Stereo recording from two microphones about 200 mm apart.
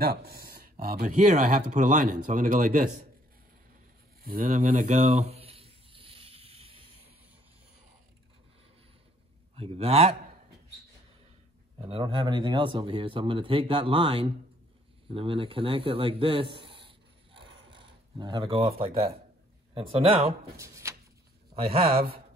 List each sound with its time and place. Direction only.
0.0 s speech: 50° right (ahead or behind)
4.2 s a sound: 45° right (ahead or behind); by 6.9 s 30° right (ahead or behind)
9.6 s speech: 30° right (ahead or behind)
11.8 s speech: 25° right (ahead or behind)
16.5 s writing: 25° right (ahead or behind)
17.3 s a sound: 25° right (ahead or behind)
19.7 s speech: 25° right (ahead or behind)
20.5 s speech: 15° right (ahead or behind)
21.5 s speech: 30° right (ahead or behind)